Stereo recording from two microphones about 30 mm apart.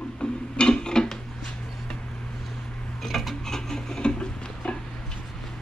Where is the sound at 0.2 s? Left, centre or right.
Left.